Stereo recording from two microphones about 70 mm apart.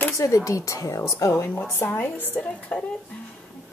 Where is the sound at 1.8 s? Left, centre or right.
Left.